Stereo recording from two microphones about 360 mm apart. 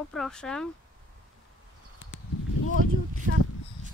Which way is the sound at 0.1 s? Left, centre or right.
Centre.